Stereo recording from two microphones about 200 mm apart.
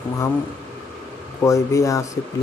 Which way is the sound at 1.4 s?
15° left (ahead or behind).